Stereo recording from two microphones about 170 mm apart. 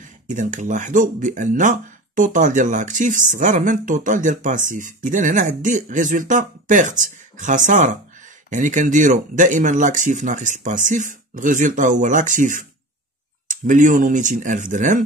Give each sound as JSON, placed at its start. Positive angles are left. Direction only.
{"t": 0.0, "sound": "speech", "side_deg": -45}